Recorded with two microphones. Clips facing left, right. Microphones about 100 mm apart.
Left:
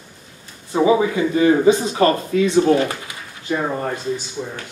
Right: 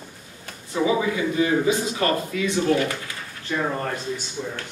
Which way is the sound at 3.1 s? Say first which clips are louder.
Left 5 dB; 15° left (ahead or behind).